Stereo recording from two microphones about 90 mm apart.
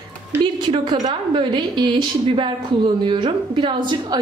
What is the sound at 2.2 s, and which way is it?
Speech, 80° right.